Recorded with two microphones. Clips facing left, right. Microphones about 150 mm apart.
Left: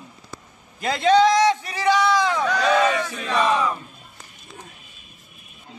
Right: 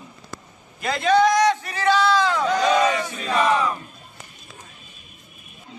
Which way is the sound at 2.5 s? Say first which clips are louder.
Right 1 dB; 15° right (ahead or behind).